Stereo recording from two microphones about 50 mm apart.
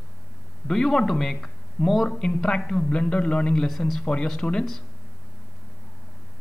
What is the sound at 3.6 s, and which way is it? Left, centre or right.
Speech, centre.